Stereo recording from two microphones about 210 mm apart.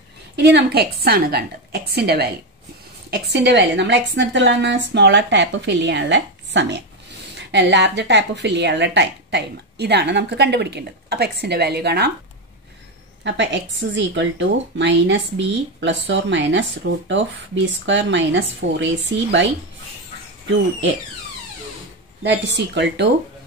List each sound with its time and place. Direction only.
0.4 s a woman's voice: 55° right (ahead or behind)
13.2 s a woman's voice: 60° right (ahead or behind)
22.2 s a woman's voice: 55° right (ahead or behind)